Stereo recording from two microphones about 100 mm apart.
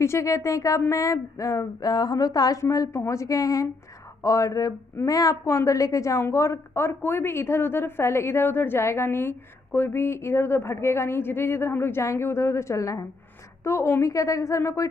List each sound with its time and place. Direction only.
0.0 s speech: 30° left (ahead or behind)